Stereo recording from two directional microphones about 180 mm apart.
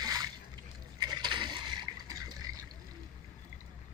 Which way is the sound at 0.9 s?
25° right (ahead or behind).